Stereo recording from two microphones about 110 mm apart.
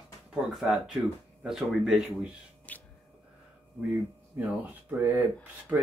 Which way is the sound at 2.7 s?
15° left (ahead or behind).